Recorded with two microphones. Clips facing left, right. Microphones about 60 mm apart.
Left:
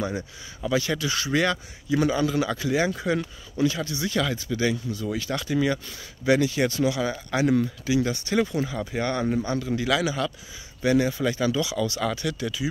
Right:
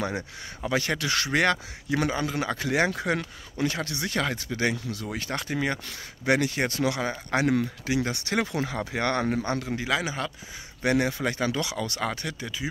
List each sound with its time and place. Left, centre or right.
0.0 s speech: right
0.7 s speech: right
2.0 s speech: right
9.7 s a man's voice: right
10.8 s speech: right